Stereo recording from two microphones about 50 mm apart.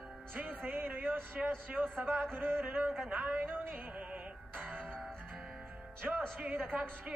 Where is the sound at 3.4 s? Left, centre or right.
Right.